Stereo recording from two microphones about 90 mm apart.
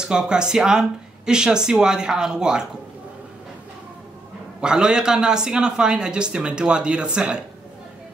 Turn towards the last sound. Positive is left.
turn(degrees=-10)  # may be behind; listen again after turning